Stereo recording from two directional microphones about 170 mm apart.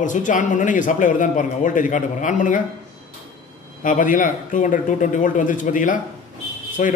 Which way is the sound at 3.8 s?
50° left (ahead or behind).